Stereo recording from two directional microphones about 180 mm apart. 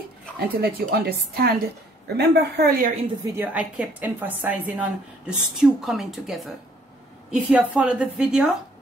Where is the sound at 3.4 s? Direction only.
5° right (ahead or behind).